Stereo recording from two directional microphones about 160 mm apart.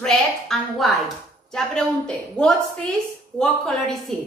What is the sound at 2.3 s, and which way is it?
A woman's voice, 5° left (ahead or behind).